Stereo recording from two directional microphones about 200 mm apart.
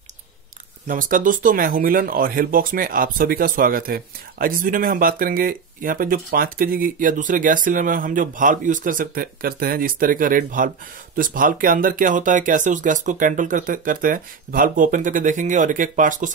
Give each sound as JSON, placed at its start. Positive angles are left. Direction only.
{"t": 0.8, "sound": "speech", "side_deg": -40}